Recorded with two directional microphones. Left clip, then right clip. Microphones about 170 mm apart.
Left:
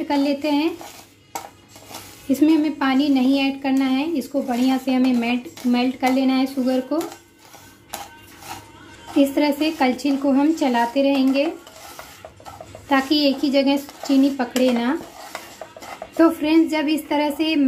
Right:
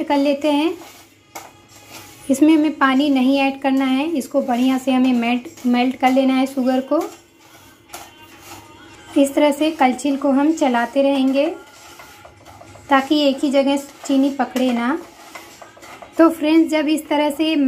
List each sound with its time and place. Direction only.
0.1 s speech: 5° right (ahead or behind)
2.3 s speech: centre (ahead or behind)
9.1 s speech: centre (ahead or behind)
12.8 s speech: centre (ahead or behind)
16.2 s a woman's voice: 5° right (ahead or behind)